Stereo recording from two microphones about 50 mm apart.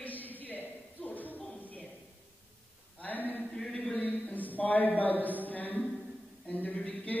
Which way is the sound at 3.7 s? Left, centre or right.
Left.